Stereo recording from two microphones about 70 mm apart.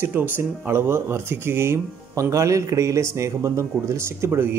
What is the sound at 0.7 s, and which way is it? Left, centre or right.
Speech, right.